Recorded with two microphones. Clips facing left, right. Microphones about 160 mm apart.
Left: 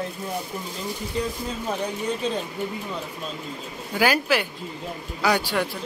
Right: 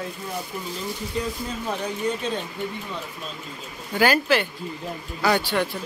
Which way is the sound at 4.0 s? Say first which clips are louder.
Right 1 dB; 10° left (ahead or behind).